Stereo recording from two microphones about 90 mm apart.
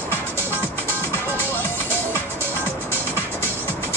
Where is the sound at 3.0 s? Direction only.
25° right (ahead or behind).